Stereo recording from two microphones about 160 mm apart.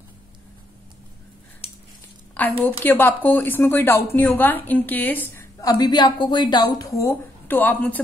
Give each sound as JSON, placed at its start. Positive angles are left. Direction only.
{"t": 2.6, "sound": "a woman's voice", "side_deg": 10}